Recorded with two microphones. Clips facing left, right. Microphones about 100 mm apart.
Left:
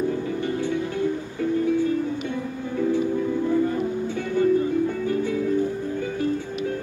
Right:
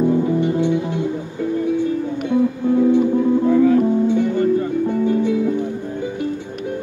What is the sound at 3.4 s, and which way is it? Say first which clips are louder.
Music: right 9 dB; 90° right.